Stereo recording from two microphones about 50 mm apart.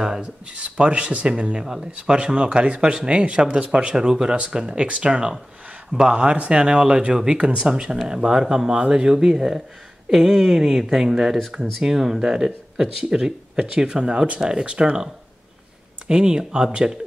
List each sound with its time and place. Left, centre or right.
0.0 s speech: centre
5.1 s speech: centre
16.1 s speech: centre